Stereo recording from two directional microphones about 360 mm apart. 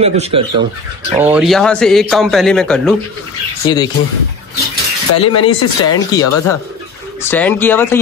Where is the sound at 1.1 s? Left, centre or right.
Centre.